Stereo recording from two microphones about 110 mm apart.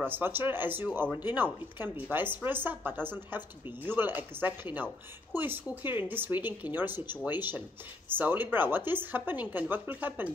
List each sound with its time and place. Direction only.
0.0 s speech: 20° right (ahead or behind)